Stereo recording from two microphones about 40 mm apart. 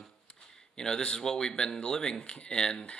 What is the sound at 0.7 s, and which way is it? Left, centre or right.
Speech, centre.